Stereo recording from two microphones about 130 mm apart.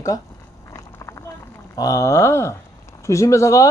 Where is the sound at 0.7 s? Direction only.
25° left (ahead or behind).